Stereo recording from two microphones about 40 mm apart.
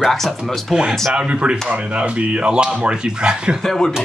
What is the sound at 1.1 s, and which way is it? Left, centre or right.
Speech, right.